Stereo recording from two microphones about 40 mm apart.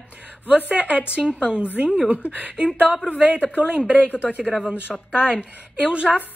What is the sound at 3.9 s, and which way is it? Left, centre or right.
Speech, left.